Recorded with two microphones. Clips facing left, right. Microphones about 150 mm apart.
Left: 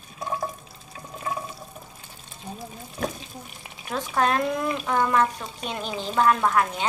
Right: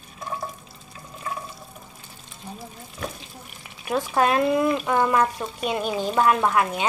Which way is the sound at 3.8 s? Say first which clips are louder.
Right 3 dB; 10° right (ahead or behind).